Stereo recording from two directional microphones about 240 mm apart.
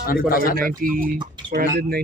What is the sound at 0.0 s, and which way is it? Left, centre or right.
Speech, left.